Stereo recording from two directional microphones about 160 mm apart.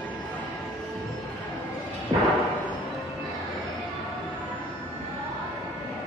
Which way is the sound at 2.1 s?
35° right (ahead or behind).